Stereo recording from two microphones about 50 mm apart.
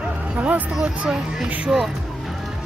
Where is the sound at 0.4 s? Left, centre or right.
Right.